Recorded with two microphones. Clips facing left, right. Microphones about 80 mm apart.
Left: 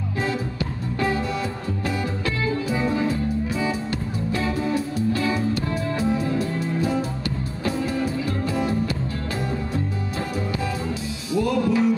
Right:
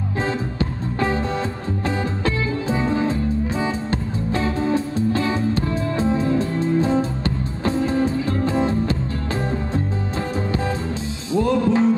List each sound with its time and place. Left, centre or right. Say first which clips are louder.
0.2 s music: right 2 dB; right
11.3 s music: right 3 dB; right